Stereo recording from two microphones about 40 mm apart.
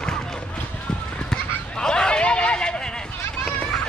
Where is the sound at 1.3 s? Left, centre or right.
Centre.